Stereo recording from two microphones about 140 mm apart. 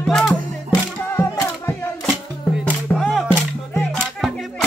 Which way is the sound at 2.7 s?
5° left (ahead or behind).